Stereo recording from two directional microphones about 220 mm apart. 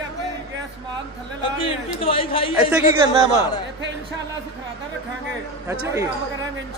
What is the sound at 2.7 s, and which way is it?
Speech, 10° right (ahead or behind).